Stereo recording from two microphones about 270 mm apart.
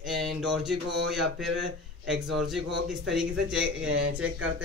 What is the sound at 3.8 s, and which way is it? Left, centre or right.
Speech, right.